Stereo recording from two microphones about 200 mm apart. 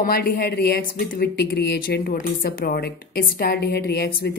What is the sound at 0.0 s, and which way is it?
Speech, 45° left (ahead or behind).